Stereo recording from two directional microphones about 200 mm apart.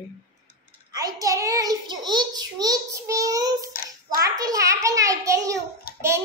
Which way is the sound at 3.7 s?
45° left (ahead or behind).